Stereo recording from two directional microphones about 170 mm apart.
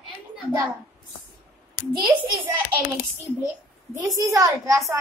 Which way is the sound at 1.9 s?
25° right (ahead or behind).